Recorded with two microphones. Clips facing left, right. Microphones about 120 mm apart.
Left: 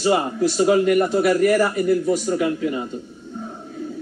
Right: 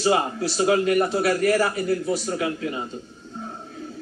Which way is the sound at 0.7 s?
5° left (ahead or behind).